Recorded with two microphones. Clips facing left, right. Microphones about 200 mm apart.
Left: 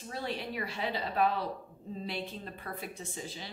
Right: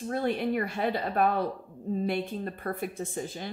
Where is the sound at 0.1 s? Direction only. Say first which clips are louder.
Right 9 dB; 55° right (ahead or behind).